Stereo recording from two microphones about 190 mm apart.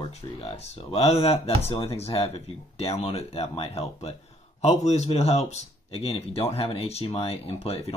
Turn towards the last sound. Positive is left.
turn(degrees=30)  # may be behind; listen again after turning